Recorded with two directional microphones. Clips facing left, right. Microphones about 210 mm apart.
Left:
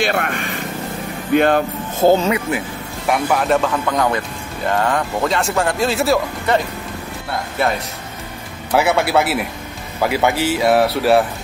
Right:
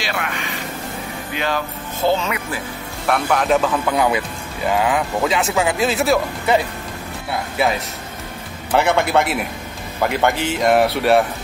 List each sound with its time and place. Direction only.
0.0 s vehicle: 50° left (ahead or behind)
1.3 s speech: 50° left (ahead or behind)
2.2 s speech: 25° left (ahead or behind)
3.1 s speech: 5° left (ahead or behind)